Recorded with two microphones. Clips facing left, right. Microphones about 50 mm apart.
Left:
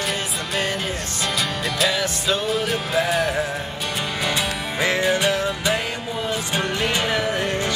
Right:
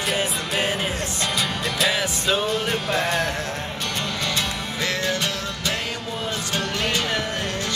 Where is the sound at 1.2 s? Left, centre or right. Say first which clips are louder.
Left 2 dB; centre.